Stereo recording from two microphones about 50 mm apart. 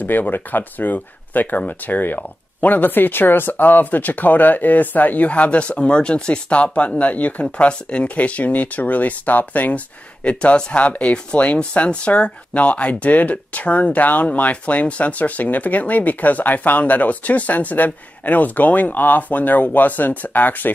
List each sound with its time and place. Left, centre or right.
0.0 s speech: left